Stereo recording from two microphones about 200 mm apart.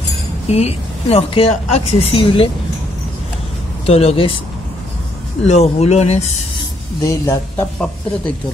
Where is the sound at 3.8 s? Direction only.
30° left (ahead or behind).